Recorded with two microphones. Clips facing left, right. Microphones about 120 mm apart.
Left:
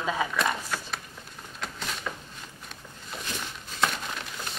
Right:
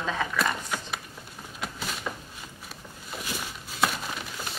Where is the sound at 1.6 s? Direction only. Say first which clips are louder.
Right 1 dB; 5° right (ahead or behind).